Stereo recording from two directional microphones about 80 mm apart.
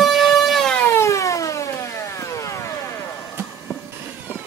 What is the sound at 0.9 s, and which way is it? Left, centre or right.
Siren, left.